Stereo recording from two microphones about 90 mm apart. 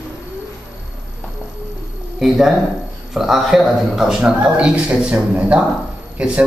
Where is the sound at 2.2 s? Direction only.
5° right (ahead or behind).